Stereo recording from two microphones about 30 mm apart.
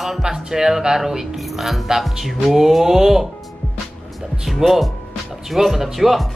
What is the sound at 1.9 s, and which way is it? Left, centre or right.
Music, right.